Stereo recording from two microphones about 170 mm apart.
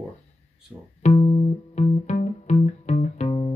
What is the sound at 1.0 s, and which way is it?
Music, 35° left (ahead or behind).